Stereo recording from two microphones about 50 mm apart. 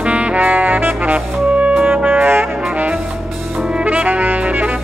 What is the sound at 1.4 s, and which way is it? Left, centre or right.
Music, right.